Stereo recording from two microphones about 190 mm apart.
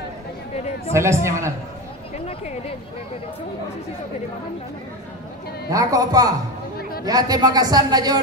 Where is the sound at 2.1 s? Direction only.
35° left (ahead or behind).